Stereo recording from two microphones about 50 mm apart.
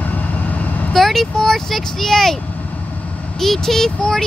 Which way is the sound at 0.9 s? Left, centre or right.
Centre.